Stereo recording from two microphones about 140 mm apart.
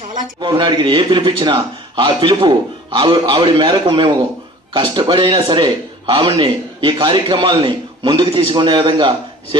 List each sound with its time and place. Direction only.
0.4 s a man's voice: 35° right (ahead or behind)